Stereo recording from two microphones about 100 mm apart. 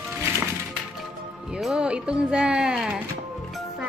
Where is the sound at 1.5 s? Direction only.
10° right (ahead or behind).